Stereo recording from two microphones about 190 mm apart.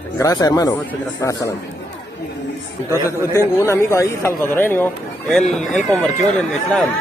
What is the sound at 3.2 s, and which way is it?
Speech, 15° left (ahead or behind).